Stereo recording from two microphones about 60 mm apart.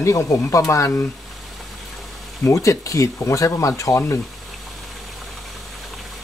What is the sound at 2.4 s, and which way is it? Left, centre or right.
Speech, left.